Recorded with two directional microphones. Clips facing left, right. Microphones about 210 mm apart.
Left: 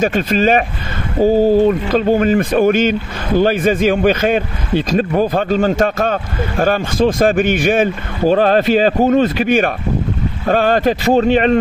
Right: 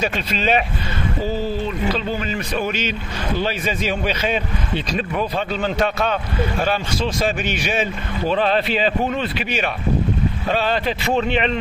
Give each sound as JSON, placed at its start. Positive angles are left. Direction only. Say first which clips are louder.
{"t": 0.0, "sound": "speech", "louder": "left 8 dB", "side_deg": 50}